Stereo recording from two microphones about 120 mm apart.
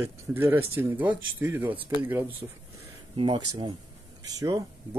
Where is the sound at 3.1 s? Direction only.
40° right (ahead or behind).